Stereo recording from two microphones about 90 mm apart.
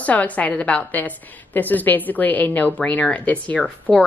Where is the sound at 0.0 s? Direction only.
15° left (ahead or behind).